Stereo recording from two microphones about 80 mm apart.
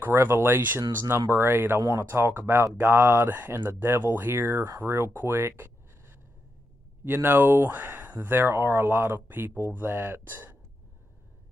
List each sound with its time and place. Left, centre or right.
0.0 s speech: right